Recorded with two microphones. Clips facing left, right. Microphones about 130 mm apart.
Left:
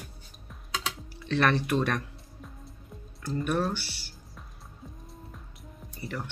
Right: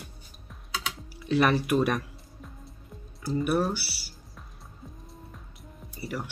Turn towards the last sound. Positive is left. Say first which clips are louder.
# right 2 dB
turn(degrees=-10)  # may be behind; listen again after turning